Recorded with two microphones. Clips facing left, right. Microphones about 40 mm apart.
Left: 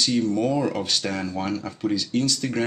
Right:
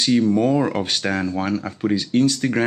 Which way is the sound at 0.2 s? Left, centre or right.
Right.